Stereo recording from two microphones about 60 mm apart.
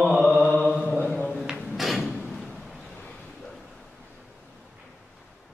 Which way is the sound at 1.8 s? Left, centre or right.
Centre.